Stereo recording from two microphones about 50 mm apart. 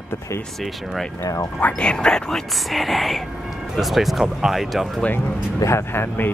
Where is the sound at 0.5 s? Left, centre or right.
Centre.